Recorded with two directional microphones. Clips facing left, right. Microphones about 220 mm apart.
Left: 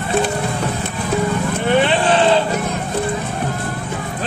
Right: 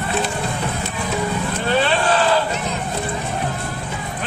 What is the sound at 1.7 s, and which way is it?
Vehicle, 20° left (ahead or behind).